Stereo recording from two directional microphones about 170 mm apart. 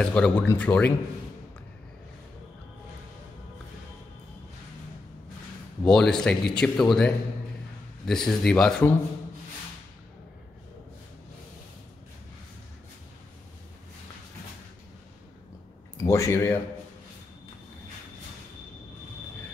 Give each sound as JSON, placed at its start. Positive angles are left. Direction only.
{"t": 0.0, "sound": "speech", "side_deg": 5}
{"t": 5.9, "sound": "speech", "side_deg": 5}
{"t": 16.0, "sound": "speech", "side_deg": 15}